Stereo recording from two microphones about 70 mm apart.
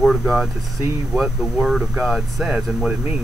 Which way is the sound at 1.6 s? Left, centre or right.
Centre.